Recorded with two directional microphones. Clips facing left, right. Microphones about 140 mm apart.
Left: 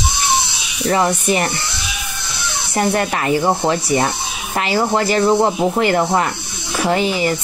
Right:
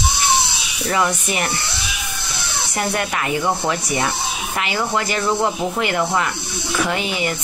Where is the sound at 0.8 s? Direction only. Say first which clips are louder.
Left 4 dB; 35° left (ahead or behind).